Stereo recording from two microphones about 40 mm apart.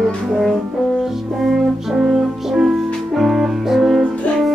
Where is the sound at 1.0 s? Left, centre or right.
Centre.